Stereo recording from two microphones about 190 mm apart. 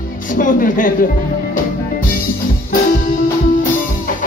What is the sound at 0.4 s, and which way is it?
Speech, 45° left (ahead or behind).